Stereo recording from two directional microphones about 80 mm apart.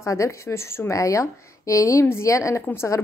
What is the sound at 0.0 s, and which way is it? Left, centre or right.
A woman's voice, left.